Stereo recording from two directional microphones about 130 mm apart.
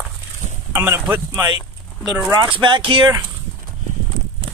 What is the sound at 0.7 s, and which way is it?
Speech, 20° right (ahead or behind).